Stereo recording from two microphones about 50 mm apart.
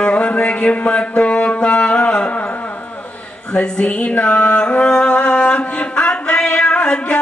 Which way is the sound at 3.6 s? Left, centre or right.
Left.